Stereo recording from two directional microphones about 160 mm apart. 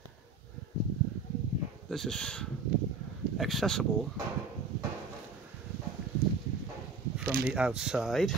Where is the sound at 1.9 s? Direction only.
5° left (ahead or behind).